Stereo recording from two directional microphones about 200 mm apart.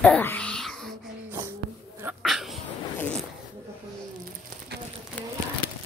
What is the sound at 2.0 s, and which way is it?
Dog, 5° right (ahead or behind).